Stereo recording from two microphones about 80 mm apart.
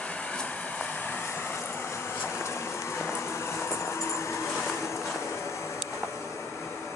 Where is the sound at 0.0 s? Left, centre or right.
Centre; by 4.6 s left.